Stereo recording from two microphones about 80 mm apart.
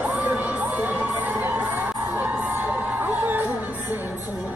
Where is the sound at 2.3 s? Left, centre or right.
Centre.